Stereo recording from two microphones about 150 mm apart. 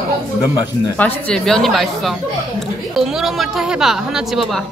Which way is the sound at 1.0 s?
5° left (ahead or behind).